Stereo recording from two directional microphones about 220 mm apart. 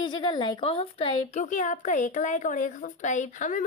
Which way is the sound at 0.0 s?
20° left (ahead or behind).